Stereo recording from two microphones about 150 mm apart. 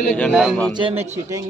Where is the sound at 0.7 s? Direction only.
35° right (ahead or behind).